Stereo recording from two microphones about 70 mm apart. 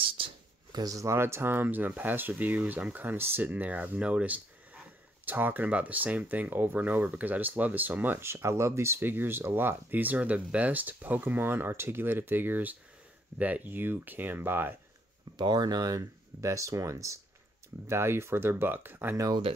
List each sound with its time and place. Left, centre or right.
0.7 s a sound: right
0.9 s speech: right
15.3 s speech: right
19.1 s speech: right